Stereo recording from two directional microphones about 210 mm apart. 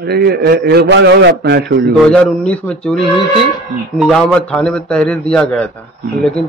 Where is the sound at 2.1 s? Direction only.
5° left (ahead or behind).